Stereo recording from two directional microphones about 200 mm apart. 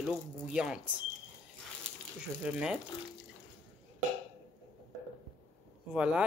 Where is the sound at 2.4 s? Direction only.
5° right (ahead or behind).